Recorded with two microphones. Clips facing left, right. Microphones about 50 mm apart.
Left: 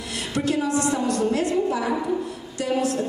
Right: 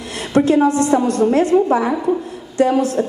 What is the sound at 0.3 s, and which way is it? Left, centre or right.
A woman's voice, right.